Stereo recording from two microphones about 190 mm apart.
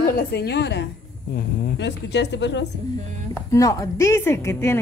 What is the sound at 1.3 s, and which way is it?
A woman's voice, 50° left (ahead or behind).